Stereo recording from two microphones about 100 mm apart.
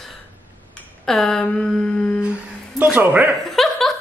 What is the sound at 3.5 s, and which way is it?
Laughter, centre (ahead or behind).